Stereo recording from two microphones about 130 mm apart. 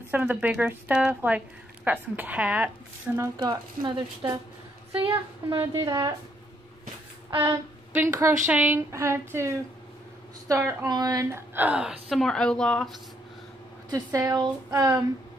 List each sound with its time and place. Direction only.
0.1 s speech: 15° right (ahead or behind)
3.3 s a woman's voice: 35° right (ahead or behind)
7.2 s a sound: 30° right (ahead or behind)
7.9 s a woman's voice: 15° right (ahead or behind)
11.5 s a woman's voice: 10° right (ahead or behind); by 12.9 s 5° left (ahead or behind)
13.8 s a woman's voice: 25° right (ahead or behind)